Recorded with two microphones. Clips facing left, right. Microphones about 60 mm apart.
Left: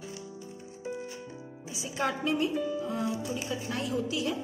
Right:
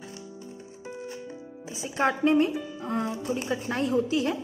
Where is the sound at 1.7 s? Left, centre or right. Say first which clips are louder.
Right 5 dB; right.